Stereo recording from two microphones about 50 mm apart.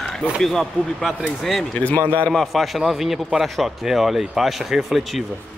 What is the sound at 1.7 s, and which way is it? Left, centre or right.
Speech, left.